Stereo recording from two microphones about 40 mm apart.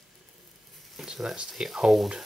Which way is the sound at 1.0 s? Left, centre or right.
Centre.